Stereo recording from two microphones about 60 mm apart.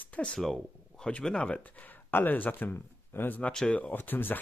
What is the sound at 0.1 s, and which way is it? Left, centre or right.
Speech, centre.